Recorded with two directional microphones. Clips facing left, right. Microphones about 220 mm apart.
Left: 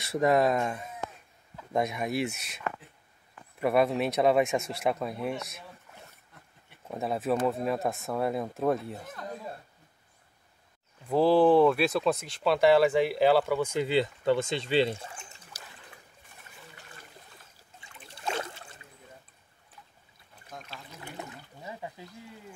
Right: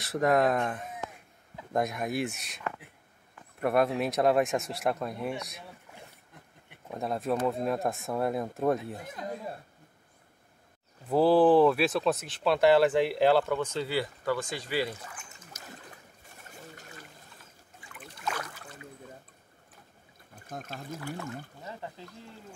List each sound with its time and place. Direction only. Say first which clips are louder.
0.0 s speech: left 1 dB; centre (ahead or behind)
6.9 s speech: left 1 dB; 5° left (ahead or behind)
9.0 s speech: right 2 dB; 15° right (ahead or behind)
11.1 s speech: even; 5° right (ahead or behind); by 15.6 s 30° left (ahead or behind)
16.4 s water: right 5 dB; 45° right (ahead or behind)
17.7 s trickle: right 3 dB; 25° left (ahead or behind)
20.4 s speech: right 6 dB; 50° right (ahead or behind)
21.6 s speech: left 4 dB; 10° left (ahead or behind)